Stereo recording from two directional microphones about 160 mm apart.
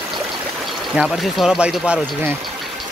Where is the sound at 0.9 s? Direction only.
5° right (ahead or behind).